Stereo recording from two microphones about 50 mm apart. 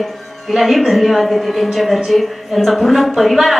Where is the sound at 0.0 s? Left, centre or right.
Centre.